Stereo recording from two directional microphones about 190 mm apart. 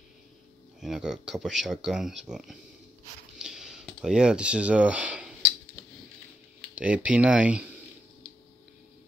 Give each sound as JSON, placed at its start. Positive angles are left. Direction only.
{"t": 0.7, "sound": "speech", "side_deg": -5}
{"t": 3.3, "sound": "a sound", "side_deg": 0}
{"t": 6.7, "sound": "speech", "side_deg": -5}